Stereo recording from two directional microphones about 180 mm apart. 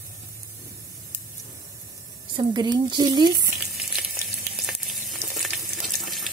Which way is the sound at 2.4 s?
25° right (ahead or behind).